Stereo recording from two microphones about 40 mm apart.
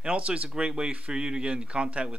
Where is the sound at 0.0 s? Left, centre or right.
Right.